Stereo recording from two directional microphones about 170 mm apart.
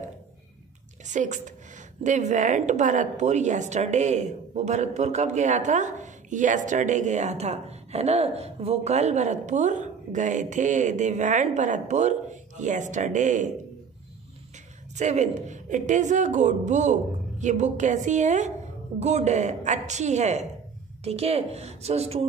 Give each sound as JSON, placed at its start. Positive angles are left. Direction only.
{"t": 1.0, "sound": "a woman's voice", "side_deg": -45}
{"t": 15.0, "sound": "a woman's voice", "side_deg": -45}